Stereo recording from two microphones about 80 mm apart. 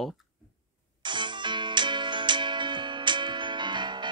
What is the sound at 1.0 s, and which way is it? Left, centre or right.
Music, right.